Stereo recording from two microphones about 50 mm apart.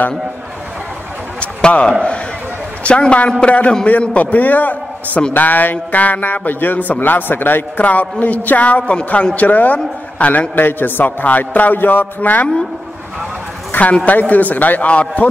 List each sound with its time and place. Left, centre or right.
1.4 s a man's voice: left
7.8 s a man's voice: left
10.5 s a man's voice: left
13.7 s a man's voice: left